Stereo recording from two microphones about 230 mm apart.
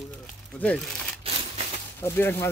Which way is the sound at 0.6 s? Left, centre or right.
Centre.